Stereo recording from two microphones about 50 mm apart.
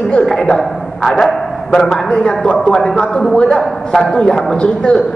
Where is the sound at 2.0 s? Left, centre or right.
Centre.